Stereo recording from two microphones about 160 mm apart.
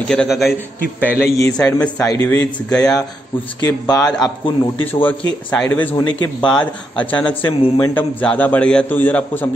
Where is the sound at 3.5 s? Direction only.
25° left (ahead or behind).